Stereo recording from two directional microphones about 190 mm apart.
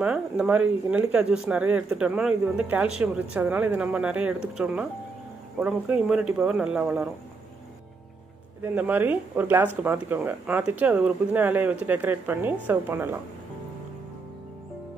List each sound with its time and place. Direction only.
0.0 s speech: 5° right (ahead or behind)
8.6 s speech: 10° right (ahead or behind)